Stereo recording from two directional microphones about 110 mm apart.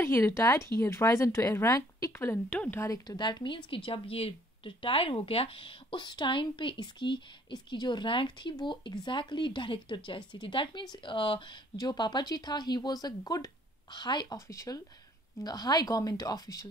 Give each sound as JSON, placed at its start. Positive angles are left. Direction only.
{"t": 0.0, "sound": "speech", "side_deg": 20}
{"t": 2.8, "sound": "speech", "side_deg": 35}